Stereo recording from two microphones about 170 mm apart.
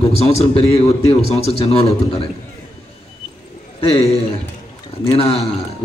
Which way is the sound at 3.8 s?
35° left (ahead or behind).